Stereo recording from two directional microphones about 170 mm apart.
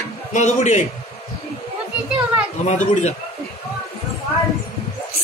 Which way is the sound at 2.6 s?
45° left (ahead or behind).